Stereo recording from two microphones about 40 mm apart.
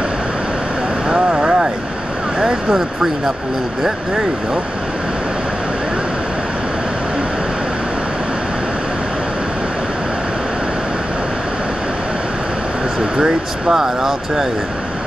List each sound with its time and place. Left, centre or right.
1.0 s vehicle: centre
2.4 s speech: centre
13.2 s speech: centre